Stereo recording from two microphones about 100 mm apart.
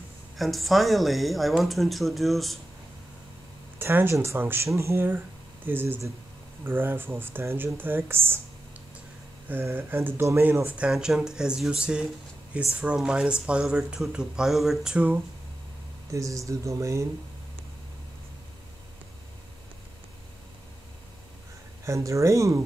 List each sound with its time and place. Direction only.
0.4 s speech: centre (ahead or behind)
3.7 s speech: 20° right (ahead or behind)
9.5 s speech: 20° right (ahead or behind)
10.9 s speech: 5° right (ahead or behind)
16.1 s speech: 35° right (ahead or behind)
21.8 s speech: 30° right (ahead or behind)